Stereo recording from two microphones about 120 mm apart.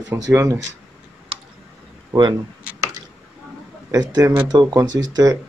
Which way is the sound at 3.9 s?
30° right (ahead or behind).